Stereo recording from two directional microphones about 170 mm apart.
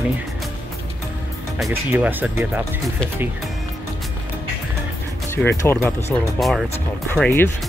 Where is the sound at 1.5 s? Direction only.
10° right (ahead or behind).